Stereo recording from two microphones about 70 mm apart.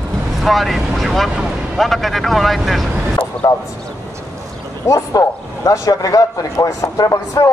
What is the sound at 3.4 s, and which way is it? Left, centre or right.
Speech, left.